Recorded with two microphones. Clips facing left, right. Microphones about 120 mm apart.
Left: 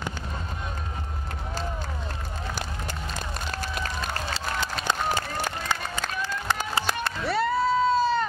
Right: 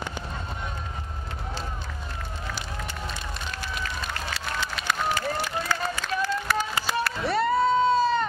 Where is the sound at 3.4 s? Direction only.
35° left (ahead or behind).